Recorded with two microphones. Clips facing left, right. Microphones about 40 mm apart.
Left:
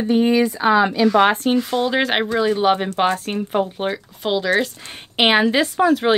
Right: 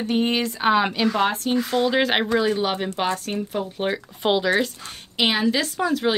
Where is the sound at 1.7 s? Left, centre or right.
Centre.